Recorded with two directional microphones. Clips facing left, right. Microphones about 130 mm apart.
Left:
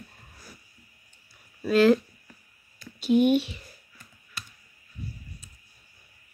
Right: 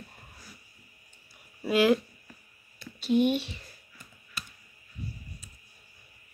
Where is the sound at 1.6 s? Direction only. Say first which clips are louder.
Left 4 dB; 15° right (ahead or behind).